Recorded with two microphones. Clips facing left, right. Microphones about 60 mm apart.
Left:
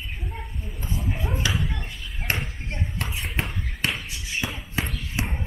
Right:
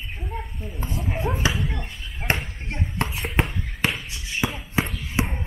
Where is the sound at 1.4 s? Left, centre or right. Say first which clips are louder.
Right 1 dB; right.